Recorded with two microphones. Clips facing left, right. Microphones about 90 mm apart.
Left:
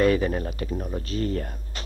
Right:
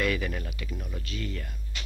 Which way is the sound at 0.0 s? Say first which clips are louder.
Left 8 dB; 35° left (ahead or behind).